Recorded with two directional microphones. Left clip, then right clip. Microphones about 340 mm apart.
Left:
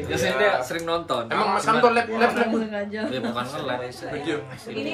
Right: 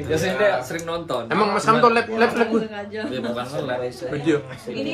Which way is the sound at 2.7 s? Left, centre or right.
Left.